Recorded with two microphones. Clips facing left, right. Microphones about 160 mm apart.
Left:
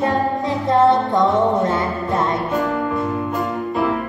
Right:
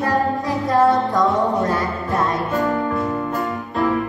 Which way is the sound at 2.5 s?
Centre (ahead or behind).